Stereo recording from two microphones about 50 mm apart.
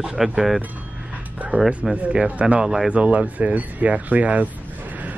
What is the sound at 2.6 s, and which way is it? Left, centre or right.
Speech, centre.